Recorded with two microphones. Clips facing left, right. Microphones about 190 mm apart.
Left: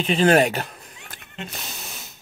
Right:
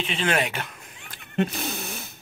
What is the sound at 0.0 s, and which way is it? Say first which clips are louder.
Speech: left 8 dB; 40° left (ahead or behind).